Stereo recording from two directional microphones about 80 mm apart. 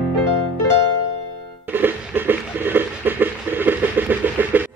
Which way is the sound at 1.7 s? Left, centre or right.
Right.